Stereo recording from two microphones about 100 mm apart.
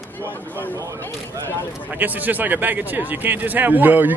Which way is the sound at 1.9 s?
15° right (ahead or behind).